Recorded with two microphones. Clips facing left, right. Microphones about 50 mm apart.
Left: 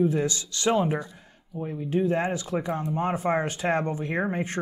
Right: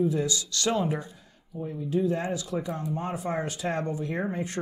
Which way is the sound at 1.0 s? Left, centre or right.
Left.